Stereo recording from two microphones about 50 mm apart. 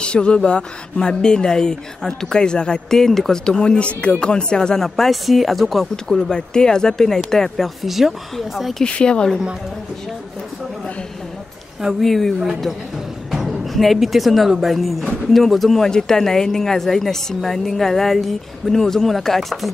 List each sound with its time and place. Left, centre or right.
0.0 s speech: centre
8.8 s speech: left
12.0 s speech: centre